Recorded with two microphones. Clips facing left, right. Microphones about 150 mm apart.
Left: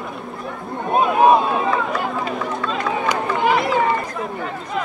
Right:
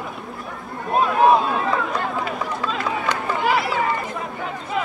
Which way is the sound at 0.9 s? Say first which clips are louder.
Left 2 dB; 10° left (ahead or behind).